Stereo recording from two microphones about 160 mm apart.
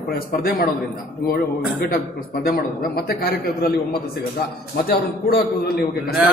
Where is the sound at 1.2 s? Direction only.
75° left (ahead or behind).